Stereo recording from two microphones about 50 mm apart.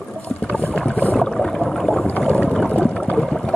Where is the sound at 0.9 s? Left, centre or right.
Left.